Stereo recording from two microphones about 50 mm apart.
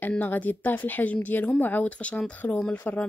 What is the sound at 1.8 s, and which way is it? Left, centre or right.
Speech, left.